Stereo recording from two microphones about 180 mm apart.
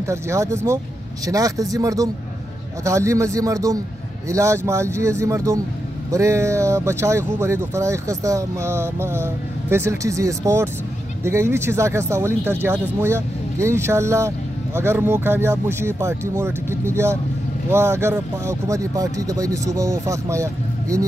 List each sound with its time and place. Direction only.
0.0 s speech: 15° right (ahead or behind)